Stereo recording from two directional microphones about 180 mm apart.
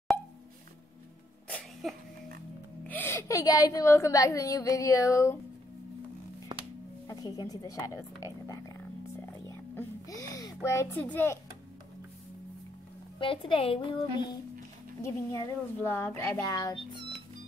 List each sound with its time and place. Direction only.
1.5 s sneeze: centre (ahead or behind)
2.9 s a woman's voice: 10° left (ahead or behind)
6.5 s music: 25° right (ahead or behind)
7.1 s a sound: 20° left (ahead or behind)
9.8 s a child's voice: 20° left (ahead or behind)
13.2 s a woman's voice: 30° left (ahead or behind)
15.0 s a woman's voice: 15° left (ahead or behind)